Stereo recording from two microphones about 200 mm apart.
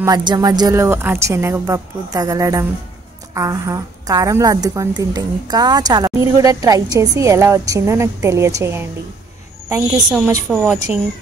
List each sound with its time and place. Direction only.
0.0 s a woman's voice: 20° right (ahead or behind)
10.5 s a woman's voice: 5° right (ahead or behind)